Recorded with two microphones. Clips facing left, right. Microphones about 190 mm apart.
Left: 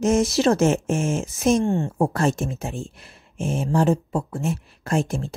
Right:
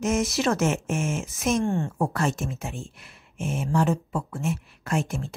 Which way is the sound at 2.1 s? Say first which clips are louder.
Left 4 dB; 35° left (ahead or behind).